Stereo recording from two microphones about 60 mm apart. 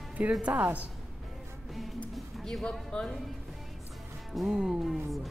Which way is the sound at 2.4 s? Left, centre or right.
Centre.